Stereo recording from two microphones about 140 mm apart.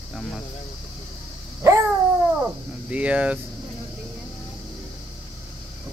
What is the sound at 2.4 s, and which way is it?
Cricket, 10° right (ahead or behind).